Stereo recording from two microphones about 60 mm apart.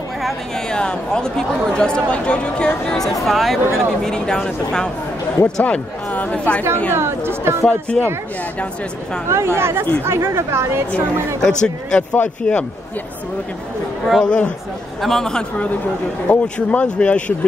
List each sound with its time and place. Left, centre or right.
0.7 s speech: centre
5.4 s speech: left
6.9 s speech: right
8.0 s speech: centre
9.3 s speech: right
11.4 s speech: centre
14.2 s speech: centre
15.0 s speech: centre
16.3 s speech: left